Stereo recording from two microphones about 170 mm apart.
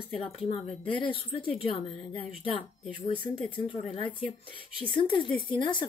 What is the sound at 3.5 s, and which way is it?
A woman's voice, 30° left (ahead or behind).